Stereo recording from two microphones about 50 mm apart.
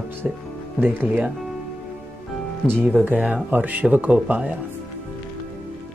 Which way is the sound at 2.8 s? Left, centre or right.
Right.